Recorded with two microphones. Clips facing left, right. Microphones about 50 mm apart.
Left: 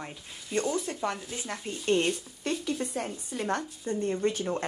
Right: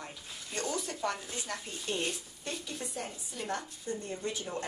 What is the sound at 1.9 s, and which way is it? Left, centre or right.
Speech, left.